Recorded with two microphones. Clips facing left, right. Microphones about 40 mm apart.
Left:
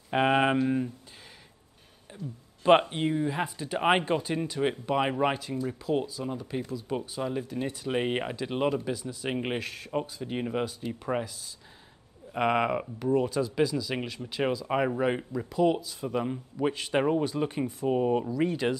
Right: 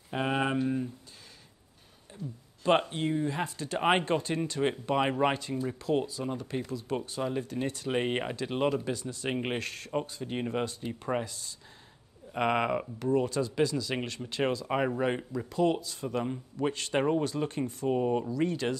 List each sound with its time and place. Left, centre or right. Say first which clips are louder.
0.1 s speech: left 6 dB; left
2.1 s a sound: left 1 dB; left
2.6 s speech: left 5 dB; left